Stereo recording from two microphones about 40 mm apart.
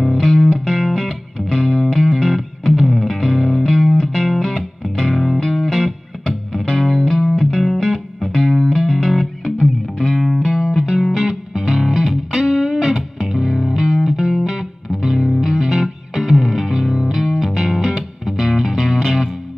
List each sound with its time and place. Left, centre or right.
0.0 s music: centre
7.6 s music: centre
10.4 s music: centre